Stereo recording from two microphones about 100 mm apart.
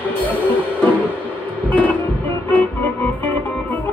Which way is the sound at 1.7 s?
15° left (ahead or behind).